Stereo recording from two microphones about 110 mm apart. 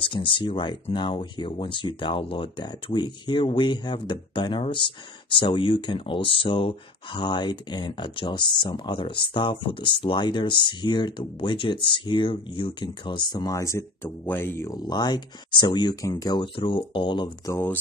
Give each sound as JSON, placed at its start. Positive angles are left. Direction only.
{"t": 0.0, "sound": "speech", "side_deg": 50}
{"t": 7.2, "sound": "speech", "side_deg": 40}
{"t": 14.7, "sound": "speech", "side_deg": 40}
{"t": 16.5, "sound": "speech", "side_deg": 50}
{"t": 17.5, "sound": "speech", "side_deg": 20}